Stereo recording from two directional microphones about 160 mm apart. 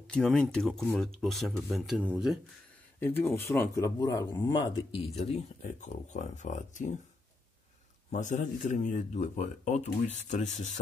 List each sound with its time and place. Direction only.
0.0 s speech: 5° left (ahead or behind)
3.0 s speech: 15° left (ahead or behind); by 7.0 s 50° left (ahead or behind)
8.1 s speech: 50° left (ahead or behind)